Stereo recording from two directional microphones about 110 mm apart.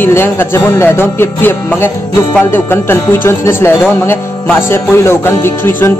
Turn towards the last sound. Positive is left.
turn(degrees=20)  # may be behind; listen again after turning